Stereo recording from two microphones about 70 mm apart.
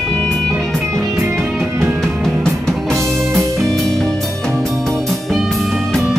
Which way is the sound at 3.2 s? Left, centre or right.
Right.